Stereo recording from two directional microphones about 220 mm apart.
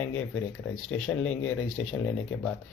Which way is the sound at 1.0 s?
5° left (ahead or behind).